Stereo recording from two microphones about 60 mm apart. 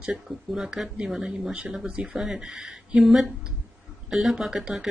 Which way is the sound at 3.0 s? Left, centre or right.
Centre.